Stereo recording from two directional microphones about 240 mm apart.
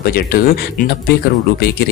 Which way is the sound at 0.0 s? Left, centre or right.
Left.